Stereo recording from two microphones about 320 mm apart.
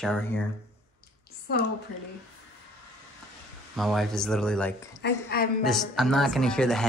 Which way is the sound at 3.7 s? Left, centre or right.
Centre.